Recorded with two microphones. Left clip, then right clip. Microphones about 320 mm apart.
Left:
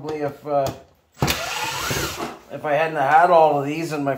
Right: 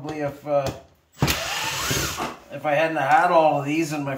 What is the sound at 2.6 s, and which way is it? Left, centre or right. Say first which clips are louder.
Speech: left 1 dB; centre.